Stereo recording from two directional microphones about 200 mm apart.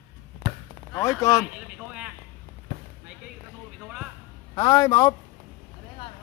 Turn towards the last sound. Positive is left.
turn(degrees=20)  # may be behind; listen again after turning